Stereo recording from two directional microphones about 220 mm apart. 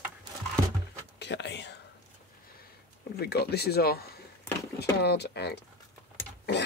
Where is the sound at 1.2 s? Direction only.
50° left (ahead or behind).